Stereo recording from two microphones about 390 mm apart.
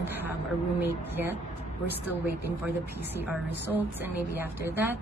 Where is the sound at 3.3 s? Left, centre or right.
Centre.